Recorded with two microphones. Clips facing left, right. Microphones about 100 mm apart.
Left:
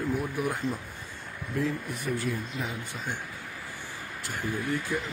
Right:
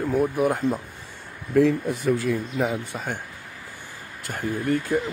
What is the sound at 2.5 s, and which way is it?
Speech, 65° right (ahead or behind).